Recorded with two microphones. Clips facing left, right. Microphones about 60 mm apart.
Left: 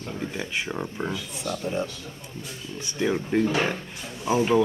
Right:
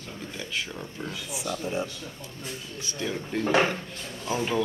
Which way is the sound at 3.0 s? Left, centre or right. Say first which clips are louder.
Left 6 dB; left.